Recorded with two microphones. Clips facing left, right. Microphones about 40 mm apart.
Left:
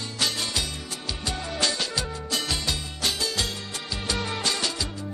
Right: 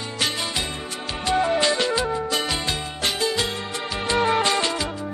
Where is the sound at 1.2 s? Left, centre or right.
Right.